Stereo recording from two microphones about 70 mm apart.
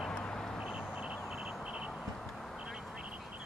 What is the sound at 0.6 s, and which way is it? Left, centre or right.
Vehicle, centre.